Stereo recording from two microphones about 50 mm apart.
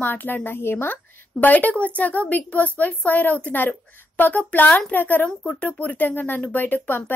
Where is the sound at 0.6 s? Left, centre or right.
Left.